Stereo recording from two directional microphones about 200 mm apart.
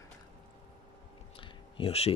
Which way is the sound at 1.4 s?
30° left (ahead or behind).